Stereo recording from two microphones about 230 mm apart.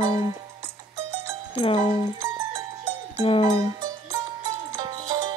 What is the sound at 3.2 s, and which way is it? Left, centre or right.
Music, left.